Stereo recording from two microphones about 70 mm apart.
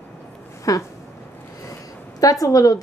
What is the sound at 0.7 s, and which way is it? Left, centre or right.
Speech, left.